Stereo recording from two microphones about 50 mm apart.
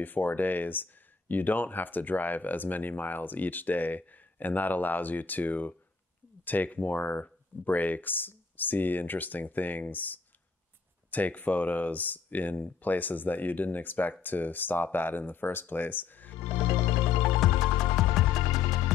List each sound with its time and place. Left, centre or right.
0.0 s speech: left
17.4 s music: centre